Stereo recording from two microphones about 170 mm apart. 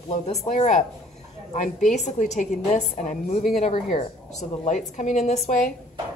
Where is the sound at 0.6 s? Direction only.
45° left (ahead or behind).